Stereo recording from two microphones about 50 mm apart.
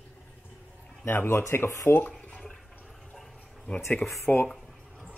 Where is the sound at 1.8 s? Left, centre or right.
Left.